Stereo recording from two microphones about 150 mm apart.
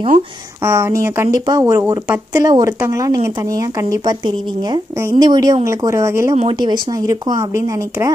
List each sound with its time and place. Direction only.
0.7 s speech: 20° right (ahead or behind)